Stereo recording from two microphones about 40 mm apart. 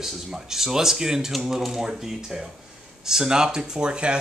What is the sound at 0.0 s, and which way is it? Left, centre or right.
Speech, centre.